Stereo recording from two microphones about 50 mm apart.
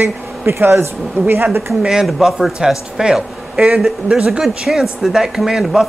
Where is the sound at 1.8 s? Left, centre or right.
Centre.